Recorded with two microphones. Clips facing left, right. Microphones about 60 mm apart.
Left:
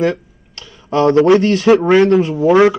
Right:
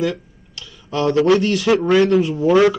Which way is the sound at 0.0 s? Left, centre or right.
Left.